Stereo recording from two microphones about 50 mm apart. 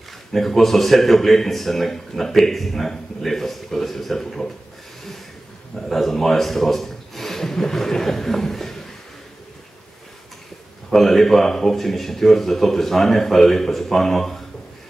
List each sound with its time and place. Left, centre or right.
0.3 s speech: centre
5.8 s a man's voice: centre
10.9 s speech: centre